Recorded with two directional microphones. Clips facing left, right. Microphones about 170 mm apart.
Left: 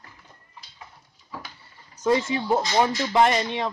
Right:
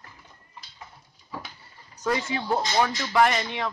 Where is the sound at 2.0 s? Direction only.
25° left (ahead or behind).